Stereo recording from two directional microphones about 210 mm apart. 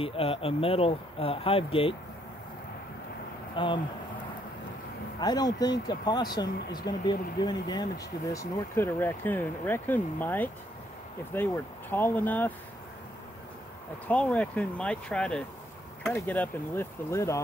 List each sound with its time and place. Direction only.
0.0 s speech: 25° left (ahead or behind)
3.5 s speech: 25° left (ahead or behind)
5.2 s speech: 20° left (ahead or behind)
14.0 s speech: 5° left (ahead or behind)